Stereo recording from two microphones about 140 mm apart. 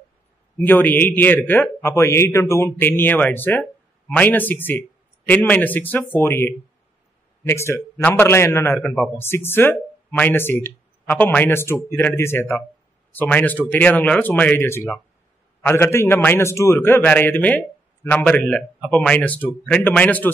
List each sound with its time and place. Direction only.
0.6 s speech: 15° left (ahead or behind)